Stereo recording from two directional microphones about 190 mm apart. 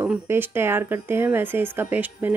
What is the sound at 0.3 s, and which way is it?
Speech, 10° right (ahead or behind).